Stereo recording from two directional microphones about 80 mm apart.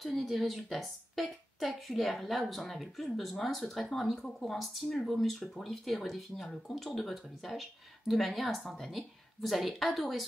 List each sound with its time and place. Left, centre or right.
0.0 s a woman's voice: centre